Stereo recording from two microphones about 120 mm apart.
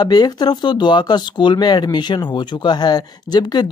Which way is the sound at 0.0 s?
35° left (ahead or behind).